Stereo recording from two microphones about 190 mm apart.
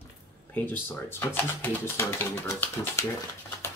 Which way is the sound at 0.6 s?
10° left (ahead or behind).